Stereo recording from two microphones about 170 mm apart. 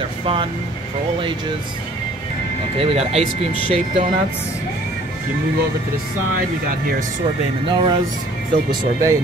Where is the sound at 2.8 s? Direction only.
35° right (ahead or behind).